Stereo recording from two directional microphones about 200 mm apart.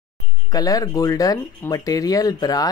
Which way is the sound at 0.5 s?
15° left (ahead or behind).